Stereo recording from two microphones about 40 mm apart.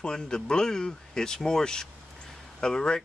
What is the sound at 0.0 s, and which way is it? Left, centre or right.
Speech, centre.